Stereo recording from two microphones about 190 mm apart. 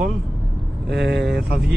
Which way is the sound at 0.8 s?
65° right (ahead or behind).